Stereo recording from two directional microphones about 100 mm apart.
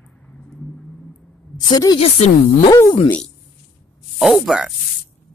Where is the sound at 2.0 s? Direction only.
75° left (ahead or behind).